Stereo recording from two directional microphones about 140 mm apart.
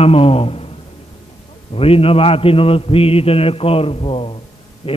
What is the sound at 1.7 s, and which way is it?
A man's voice, 45° left (ahead or behind).